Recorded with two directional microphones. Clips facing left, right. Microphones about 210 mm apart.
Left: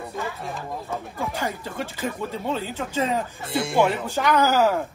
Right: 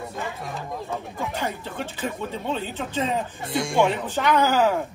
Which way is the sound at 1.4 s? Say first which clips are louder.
Left 1 dB; 15° left (ahead or behind).